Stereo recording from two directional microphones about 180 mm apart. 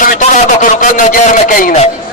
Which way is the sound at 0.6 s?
45° left (ahead or behind).